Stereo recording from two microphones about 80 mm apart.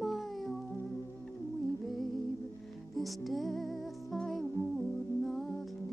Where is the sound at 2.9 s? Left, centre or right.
Centre.